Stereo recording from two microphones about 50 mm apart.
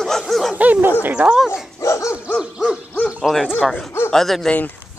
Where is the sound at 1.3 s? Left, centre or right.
Centre.